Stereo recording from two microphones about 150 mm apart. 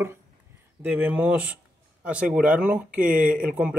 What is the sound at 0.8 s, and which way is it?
Speech, 10° right (ahead or behind).